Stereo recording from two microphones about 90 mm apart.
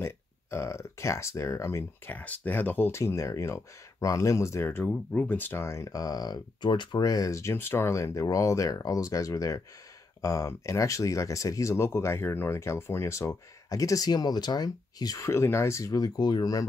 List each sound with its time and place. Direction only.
0.0 s speech: 30° left (ahead or behind)
2.1 s speech: 15° left (ahead or behind)
4.8 s speech: 15° left (ahead or behind); by 16.6 s 50° left (ahead or behind)